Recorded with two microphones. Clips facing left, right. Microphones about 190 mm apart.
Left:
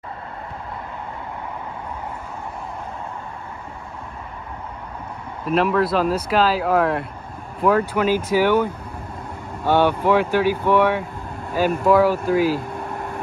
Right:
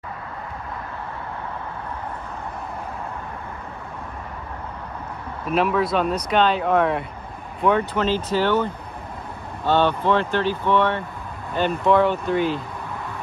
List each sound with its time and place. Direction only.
5.4 s speech: centre (ahead or behind)
12.9 s vehicle: 55° left (ahead or behind)